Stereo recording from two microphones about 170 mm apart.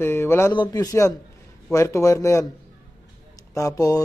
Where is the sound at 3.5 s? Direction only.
20° left (ahead or behind).